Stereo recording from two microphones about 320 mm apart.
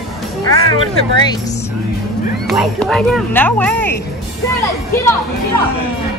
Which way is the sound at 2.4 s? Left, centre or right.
Centre.